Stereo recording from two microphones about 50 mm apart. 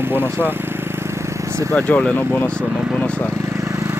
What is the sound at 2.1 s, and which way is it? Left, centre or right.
Speech, left.